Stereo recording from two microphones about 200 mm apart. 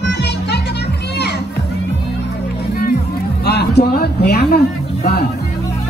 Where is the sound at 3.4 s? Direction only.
55° left (ahead or behind).